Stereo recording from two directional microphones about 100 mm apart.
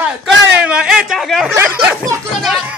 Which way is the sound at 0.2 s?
10° right (ahead or behind).